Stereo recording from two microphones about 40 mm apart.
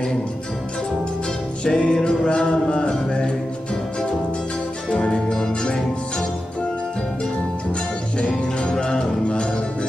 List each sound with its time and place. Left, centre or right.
1.6 s music: left
2.0 s a sound: left
4.9 s music: centre
8.2 s music: left